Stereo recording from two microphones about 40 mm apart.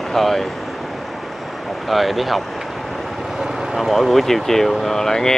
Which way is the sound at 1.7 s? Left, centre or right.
Centre.